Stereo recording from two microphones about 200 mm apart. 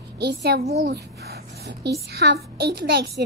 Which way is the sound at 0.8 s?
55° right (ahead or behind).